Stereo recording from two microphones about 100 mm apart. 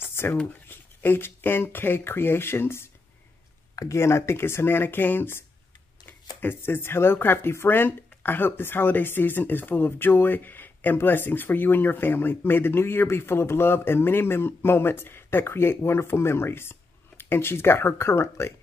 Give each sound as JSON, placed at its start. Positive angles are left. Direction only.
{"t": 0.0, "sound": "a sound", "side_deg": 25}
{"t": 0.7, "sound": "speech", "side_deg": 20}
{"t": 6.4, "sound": "speech", "side_deg": 20}